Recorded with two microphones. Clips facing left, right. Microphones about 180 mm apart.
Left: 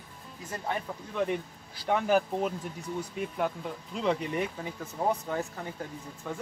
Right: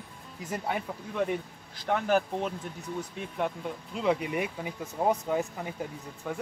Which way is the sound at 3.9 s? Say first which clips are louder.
Right 1 dB; 5° right (ahead or behind).